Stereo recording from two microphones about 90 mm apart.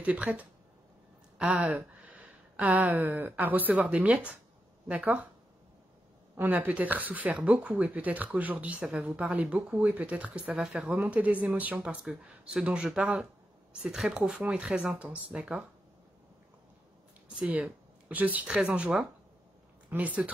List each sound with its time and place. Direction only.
0.0 s speech: 15° right (ahead or behind)
6.3 s speech: 20° right (ahead or behind)
17.3 s speech: 15° right (ahead or behind)